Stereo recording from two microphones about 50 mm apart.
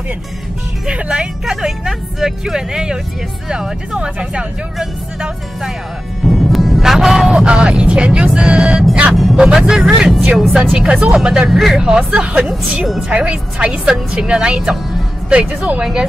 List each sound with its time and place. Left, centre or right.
0.8 s speech: right
1.4 s speech: centre
6.2 s a sound: centre
7.3 s speech: right
9.1 s music: centre
9.4 s speech: centre
10.3 s speech: centre
10.7 s speech: right
11.1 s speech: centre
11.8 s speech: centre
12.4 s speech: centre
15.8 s speech: centre